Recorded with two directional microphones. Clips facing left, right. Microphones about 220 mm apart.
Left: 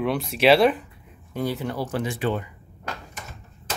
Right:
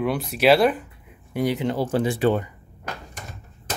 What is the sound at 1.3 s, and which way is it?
Speech, 15° right (ahead or behind).